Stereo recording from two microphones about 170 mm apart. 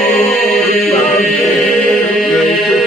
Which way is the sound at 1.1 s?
Centre (ahead or behind).